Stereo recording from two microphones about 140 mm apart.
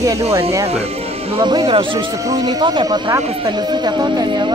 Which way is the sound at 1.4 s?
30° right (ahead or behind).